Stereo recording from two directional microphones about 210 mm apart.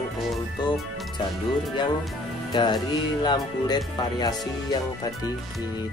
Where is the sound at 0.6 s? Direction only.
20° left (ahead or behind).